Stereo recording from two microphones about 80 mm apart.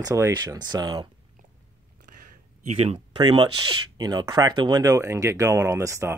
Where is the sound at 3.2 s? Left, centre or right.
Right.